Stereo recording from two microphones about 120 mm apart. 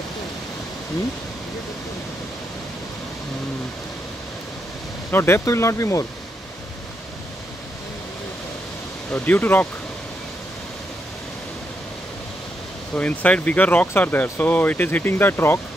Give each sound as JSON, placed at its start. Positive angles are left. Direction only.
{"t": 5.1, "sound": "speech", "side_deg": 20}
{"t": 9.1, "sound": "speech", "side_deg": 15}
{"t": 12.9, "sound": "speech", "side_deg": 10}